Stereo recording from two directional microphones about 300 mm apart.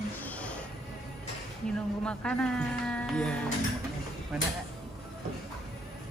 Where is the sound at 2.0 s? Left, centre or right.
Centre.